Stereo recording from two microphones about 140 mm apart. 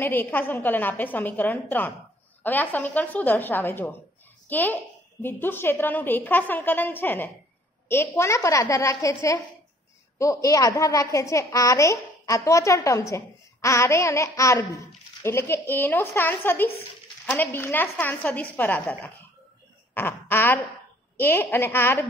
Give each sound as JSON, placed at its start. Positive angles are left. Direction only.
{"t": 0.0, "sound": "a woman's voice", "side_deg": 15}
{"t": 19.9, "sound": "a sound", "side_deg": 15}
{"t": 21.2, "sound": "a woman's voice", "side_deg": 15}